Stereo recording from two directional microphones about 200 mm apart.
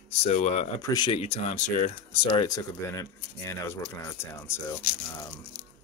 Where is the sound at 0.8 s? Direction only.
20° left (ahead or behind); by 1.9 s 40° left (ahead or behind).